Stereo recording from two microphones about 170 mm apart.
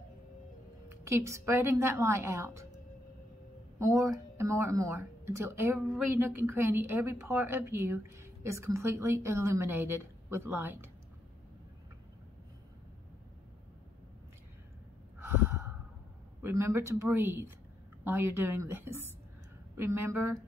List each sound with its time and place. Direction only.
0.8 s a woman's voice: 15° right (ahead or behind)
3.8 s a woman's voice: 20° right (ahead or behind)
15.1 s gasp: 15° right (ahead or behind)
16.4 s a woman's voice: 15° right (ahead or behind)